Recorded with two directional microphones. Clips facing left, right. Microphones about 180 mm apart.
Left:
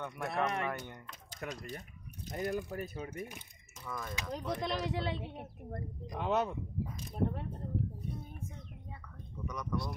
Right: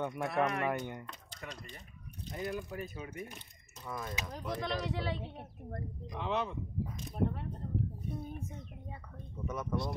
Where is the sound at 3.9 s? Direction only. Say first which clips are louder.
Left 1 dB; 15° right (ahead or behind).